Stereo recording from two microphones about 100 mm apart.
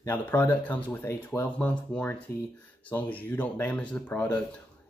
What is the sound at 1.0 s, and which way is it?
Speech, 25° left (ahead or behind).